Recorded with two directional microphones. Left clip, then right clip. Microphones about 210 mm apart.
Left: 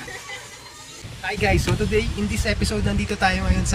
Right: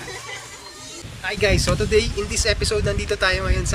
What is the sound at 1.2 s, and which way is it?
Speech, 10° right (ahead or behind).